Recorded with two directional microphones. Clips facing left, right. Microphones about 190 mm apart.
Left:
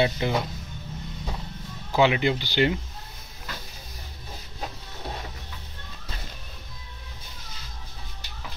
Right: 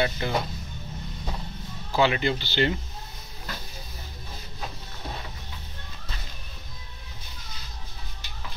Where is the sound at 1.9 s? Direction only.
15° left (ahead or behind).